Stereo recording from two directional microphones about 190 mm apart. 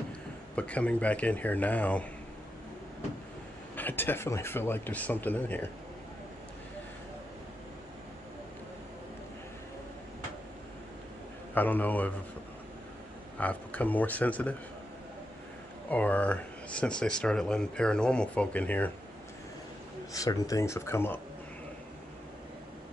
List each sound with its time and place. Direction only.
0.6 s speech: 5° left (ahead or behind)
3.7 s speech: 10° left (ahead or behind)
11.5 s speech: 10° left (ahead or behind)
13.4 s speech: 5° left (ahead or behind)
15.9 s speech: 10° left (ahead or behind)
20.1 s speech: 20° left (ahead or behind)